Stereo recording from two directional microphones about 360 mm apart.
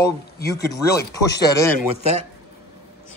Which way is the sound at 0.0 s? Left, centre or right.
Left.